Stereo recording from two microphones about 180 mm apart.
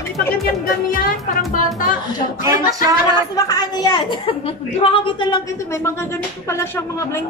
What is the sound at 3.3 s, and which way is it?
A woman's voice, 20° left (ahead or behind).